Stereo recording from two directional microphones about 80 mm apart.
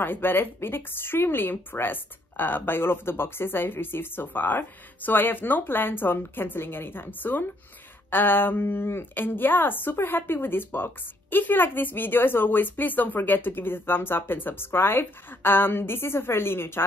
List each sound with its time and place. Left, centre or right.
0.0 s a woman's voice: left